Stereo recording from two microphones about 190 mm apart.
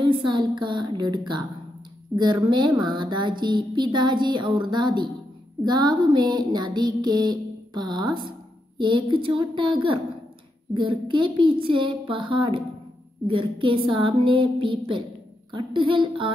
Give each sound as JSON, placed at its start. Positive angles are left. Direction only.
{"t": 0.0, "sound": "speech", "side_deg": -25}